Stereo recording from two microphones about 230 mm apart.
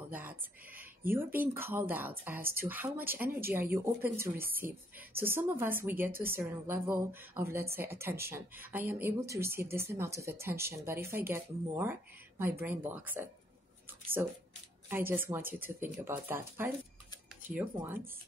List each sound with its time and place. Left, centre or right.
0.1 s speech: centre
14.9 s speech: centre